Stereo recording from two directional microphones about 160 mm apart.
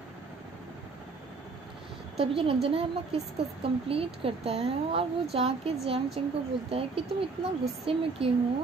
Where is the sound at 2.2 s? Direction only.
35° right (ahead or behind).